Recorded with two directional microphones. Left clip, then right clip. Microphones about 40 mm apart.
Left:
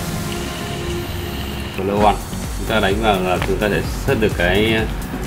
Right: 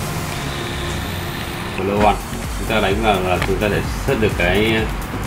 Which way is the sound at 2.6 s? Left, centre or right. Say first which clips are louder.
Even; left.